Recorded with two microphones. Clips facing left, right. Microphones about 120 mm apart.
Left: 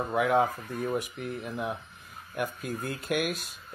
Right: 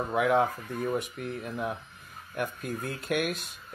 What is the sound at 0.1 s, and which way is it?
Speech, centre (ahead or behind).